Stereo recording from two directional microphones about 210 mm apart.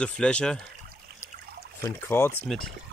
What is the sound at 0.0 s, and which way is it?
Speech, 5° left (ahead or behind).